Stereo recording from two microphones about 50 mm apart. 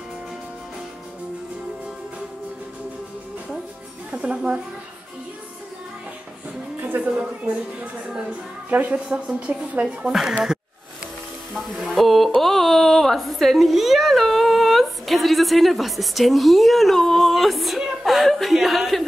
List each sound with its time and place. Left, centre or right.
4.1 s a woman's voice: right
7.2 s speech: right
8.6 s speech: right
11.5 s music: centre